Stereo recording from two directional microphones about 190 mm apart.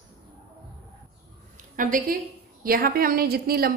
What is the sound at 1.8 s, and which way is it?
A woman's voice, 45° right (ahead or behind).